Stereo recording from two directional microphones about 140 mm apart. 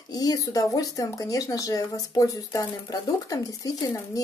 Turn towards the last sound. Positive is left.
turn(degrees=25)  # may be behind; listen again after turning